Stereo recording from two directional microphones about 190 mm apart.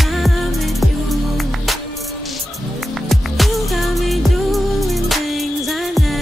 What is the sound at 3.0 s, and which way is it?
Music, centre (ahead or behind).